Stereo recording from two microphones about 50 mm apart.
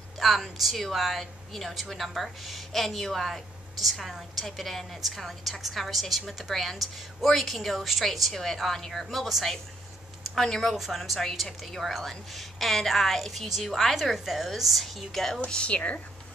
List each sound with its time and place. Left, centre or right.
0.2 s a woman's voice: centre
15.4 s a woman's voice: left